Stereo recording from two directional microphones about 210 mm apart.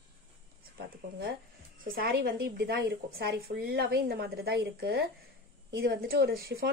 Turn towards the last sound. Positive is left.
turn(degrees=-45)  # may be behind; listen again after turning